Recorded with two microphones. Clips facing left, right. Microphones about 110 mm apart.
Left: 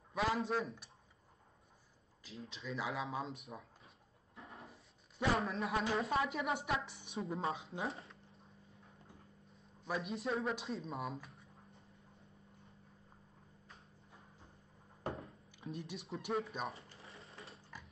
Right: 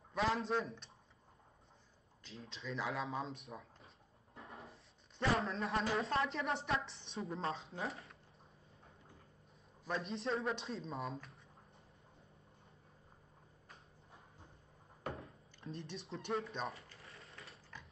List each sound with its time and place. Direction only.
0.1 s speech: centre (ahead or behind)
2.2 s speech: centre (ahead or behind)
4.4 s a sound: centre (ahead or behind)
5.3 s speech: centre (ahead or behind)
9.8 s speech: 5° left (ahead or behind)
15.1 s a sound: 5° left (ahead or behind)
16.1 s speech: centre (ahead or behind)
16.7 s mechanisms: 30° left (ahead or behind)